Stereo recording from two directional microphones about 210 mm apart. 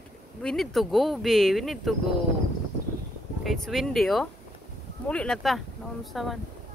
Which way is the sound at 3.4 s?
Centre (ahead or behind).